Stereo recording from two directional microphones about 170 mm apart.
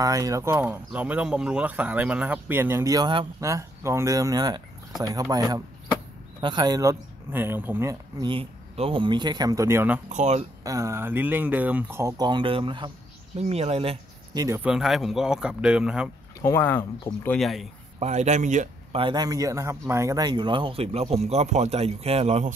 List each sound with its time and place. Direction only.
0.0 s speech: 20° right (ahead or behind)
10.1 s speech: 40° right (ahead or behind)
10.6 s speech: 20° right (ahead or behind); by 13.9 s 35° right (ahead or behind)
14.3 s speech: 20° right (ahead or behind)
14.6 s speech: 5° right (ahead or behind)
16.3 s speech: 15° left (ahead or behind); by 17.6 s centre (ahead or behind)
17.9 s speech: 40° right (ahead or behind)
18.9 s speech: 25° right (ahead or behind)